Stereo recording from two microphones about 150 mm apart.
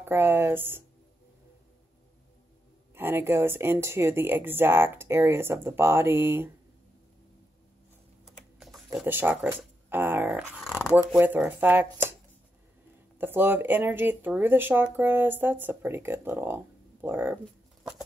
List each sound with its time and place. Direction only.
0.0 s speech: 15° right (ahead or behind)
2.9 s speech: 15° right (ahead or behind)
8.3 s typing: 5° right (ahead or behind)
9.0 s speech: 15° right (ahead or behind)
13.2 s speech: 15° right (ahead or behind)